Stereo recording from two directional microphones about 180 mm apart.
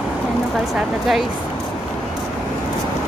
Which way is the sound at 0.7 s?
Centre (ahead or behind).